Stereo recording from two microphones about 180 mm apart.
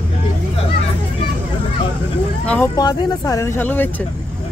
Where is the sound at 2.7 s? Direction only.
20° left (ahead or behind).